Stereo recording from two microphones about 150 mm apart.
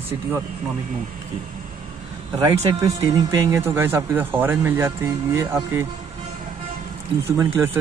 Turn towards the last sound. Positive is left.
turn(degrees=-20)  # may be behind; listen again after turning